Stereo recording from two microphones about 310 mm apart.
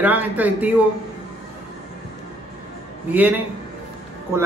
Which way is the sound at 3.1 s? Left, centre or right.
Centre.